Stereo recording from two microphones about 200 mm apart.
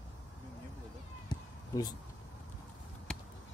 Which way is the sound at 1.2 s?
20° left (ahead or behind).